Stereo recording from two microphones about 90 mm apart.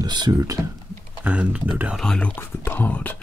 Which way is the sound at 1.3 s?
15° right (ahead or behind).